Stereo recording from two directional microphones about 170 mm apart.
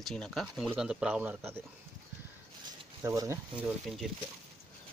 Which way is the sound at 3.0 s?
15° right (ahead or behind).